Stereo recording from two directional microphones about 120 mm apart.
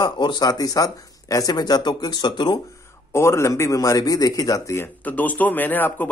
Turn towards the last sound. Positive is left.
turn(degrees=15)  # may be behind; listen again after turning